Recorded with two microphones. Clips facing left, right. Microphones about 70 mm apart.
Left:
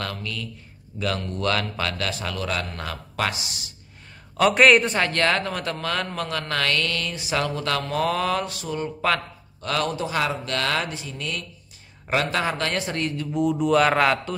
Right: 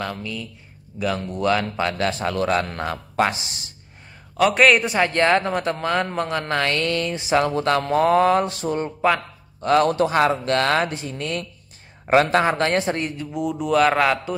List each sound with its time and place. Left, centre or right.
0.0 s a man's voice: centre; by 3.7 s right
4.4 s speech: centre
4.9 s a man's voice: centre
9.8 s speech: right
13.3 s speech: centre